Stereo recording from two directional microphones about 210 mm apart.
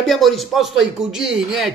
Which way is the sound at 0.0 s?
Centre (ahead or behind).